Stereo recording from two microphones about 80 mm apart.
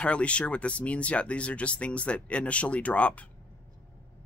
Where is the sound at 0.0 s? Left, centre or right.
Centre.